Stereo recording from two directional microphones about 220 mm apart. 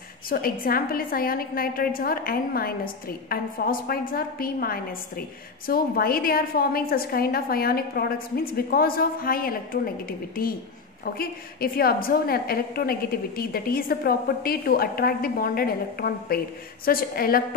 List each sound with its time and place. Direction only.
0.3 s a woman's voice: 40° left (ahead or behind)